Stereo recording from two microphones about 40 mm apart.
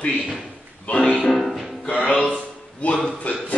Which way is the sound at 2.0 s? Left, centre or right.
Left.